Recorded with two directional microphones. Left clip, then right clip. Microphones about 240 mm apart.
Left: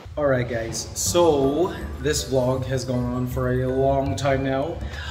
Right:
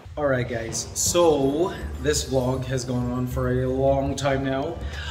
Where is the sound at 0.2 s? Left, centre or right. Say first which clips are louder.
Left 2 dB; centre.